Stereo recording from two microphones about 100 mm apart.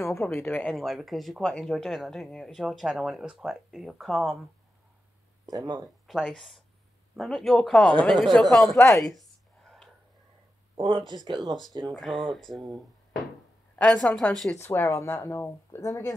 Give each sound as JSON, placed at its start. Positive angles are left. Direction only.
{"t": 0.1, "sound": "speech", "side_deg": 25}
{"t": 0.7, "sound": "speech", "side_deg": 0}
{"t": 5.5, "sound": "speech", "side_deg": -40}
{"t": 6.2, "sound": "a woman's voice", "side_deg": 0}
{"t": 10.8, "sound": "speech", "side_deg": -55}
{"t": 11.2, "sound": "speech", "side_deg": -40}
{"t": 11.9, "sound": "speech", "side_deg": 0}
{"t": 13.8, "sound": "a woman's voice", "side_deg": 10}
{"t": 14.5, "sound": "speech", "side_deg": 20}